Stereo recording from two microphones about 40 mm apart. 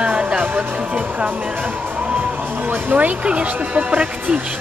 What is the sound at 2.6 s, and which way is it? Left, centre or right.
Speech, right.